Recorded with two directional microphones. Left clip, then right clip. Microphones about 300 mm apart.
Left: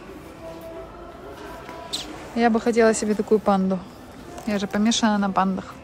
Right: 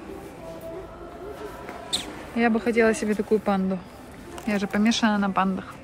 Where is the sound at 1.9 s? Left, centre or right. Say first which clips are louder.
Right 2 dB; right.